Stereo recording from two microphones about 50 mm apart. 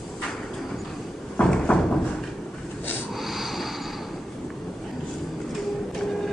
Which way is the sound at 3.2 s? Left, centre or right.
Centre.